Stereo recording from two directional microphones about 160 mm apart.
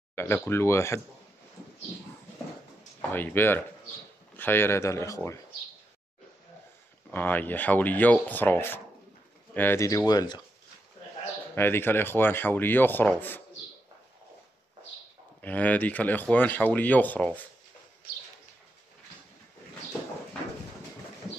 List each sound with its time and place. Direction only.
0.1 s speech: 15° left (ahead or behind)
3.1 s speech: 10° left (ahead or behind)
7.1 s speech: 10° left (ahead or behind); by 10.4 s 25° left (ahead or behind)
11.5 s speech: 15° left (ahead or behind)
15.4 s speech: 10° left (ahead or behind)